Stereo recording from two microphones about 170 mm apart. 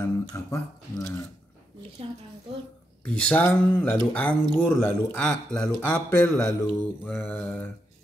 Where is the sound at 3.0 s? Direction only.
5° left (ahead or behind).